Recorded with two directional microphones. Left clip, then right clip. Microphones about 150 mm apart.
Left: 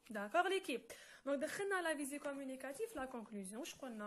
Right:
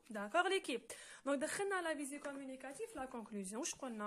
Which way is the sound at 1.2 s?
15° right (ahead or behind).